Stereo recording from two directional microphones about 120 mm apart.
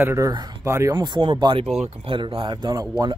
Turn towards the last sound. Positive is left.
turn(degrees=-35)  # may be behind; listen again after turning